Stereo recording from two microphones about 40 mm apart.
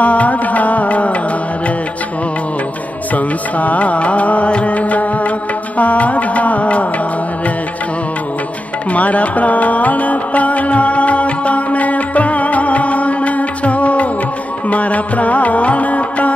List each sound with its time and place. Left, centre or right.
0.0 s music: left
3.2 s music: left
8.9 s music: left